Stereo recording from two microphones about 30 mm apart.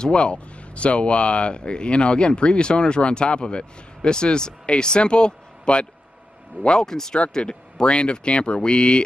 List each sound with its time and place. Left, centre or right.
0.0 s speech: left
6.7 s speech: centre